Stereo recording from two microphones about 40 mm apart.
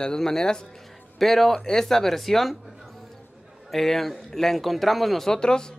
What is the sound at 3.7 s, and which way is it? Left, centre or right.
Speech, centre.